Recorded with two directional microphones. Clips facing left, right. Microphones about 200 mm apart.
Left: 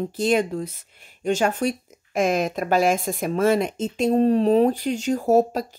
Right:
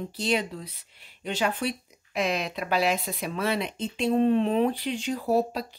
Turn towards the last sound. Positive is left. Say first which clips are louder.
# left 6 dB
turn(degrees=45)  # may be behind; listen again after turning